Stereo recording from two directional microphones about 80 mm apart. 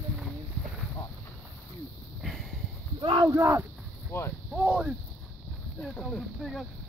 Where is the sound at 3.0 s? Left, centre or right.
Right.